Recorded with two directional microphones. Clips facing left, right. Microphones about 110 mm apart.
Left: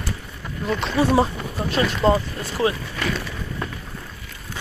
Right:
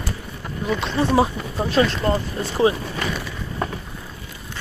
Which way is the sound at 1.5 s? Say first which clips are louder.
Right 4 dB; 25° right (ahead or behind).